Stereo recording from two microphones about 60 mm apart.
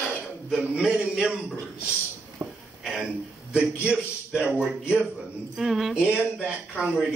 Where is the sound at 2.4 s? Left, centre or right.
Right.